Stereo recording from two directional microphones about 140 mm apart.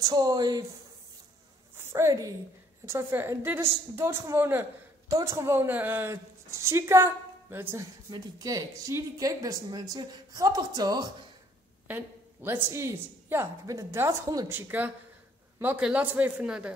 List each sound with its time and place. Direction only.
0.0 s speech: 25° right (ahead or behind)
1.8 s a woman's voice: 20° right (ahead or behind)
11.9 s a woman's voice: 15° right (ahead or behind)
14.5 s a woman's voice: 15° right (ahead or behind)